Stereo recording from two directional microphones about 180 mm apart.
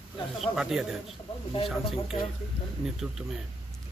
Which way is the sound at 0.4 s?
Centre (ahead or behind).